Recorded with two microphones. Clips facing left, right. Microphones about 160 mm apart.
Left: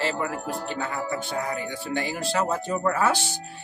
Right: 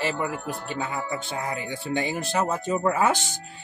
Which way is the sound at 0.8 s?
20° right (ahead or behind).